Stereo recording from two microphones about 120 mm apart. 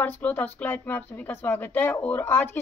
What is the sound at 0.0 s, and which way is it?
Speech, 15° left (ahead or behind).